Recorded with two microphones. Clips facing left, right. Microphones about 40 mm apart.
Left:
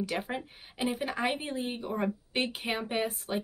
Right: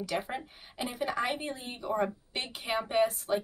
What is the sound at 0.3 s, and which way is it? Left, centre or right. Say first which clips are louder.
A woman's voice: left 1 dB; centre.